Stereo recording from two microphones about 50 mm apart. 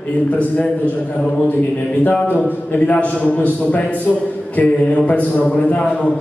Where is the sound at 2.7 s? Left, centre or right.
Left.